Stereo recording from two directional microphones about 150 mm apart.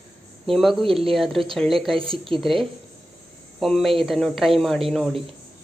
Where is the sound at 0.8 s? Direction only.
40° right (ahead or behind).